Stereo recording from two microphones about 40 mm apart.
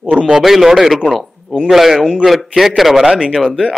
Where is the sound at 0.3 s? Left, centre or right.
Centre.